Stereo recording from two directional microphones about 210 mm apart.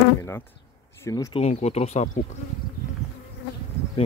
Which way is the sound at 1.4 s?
30° left (ahead or behind).